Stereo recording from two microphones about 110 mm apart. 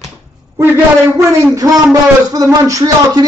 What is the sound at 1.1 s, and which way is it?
Speech, 30° right (ahead or behind).